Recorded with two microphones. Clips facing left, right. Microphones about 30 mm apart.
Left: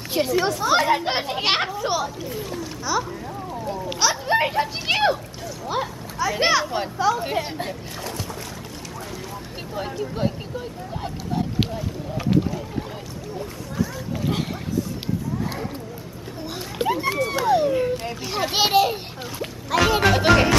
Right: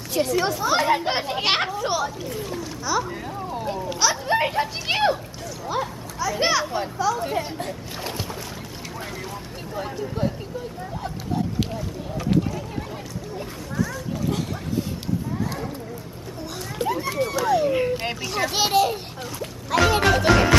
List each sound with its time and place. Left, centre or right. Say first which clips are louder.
0.3 s speech: left 3 dB; centre
3.1 s a sound: right 1 dB; right
4.0 s a child's voice: left 1 dB; centre
5.7 s a child's voice: even; centre
16.7 s a sound: left 3 dB; left
17.3 s a woman's voice: left 1 dB; centre
19.7 s a child's voice: even; centre